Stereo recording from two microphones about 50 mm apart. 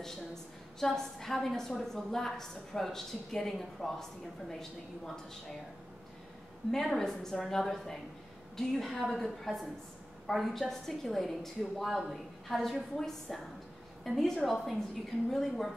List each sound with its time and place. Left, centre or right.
0.0 s a woman's voice: centre
6.7 s a woman's voice: centre